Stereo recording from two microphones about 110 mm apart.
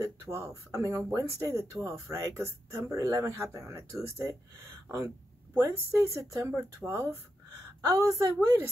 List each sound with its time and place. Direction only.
0.0 s speech: 25° right (ahead or behind)